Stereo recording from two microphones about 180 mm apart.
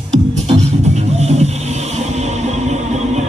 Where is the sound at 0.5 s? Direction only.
35° right (ahead or behind).